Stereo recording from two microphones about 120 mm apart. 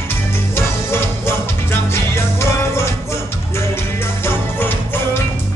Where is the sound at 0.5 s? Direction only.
20° left (ahead or behind).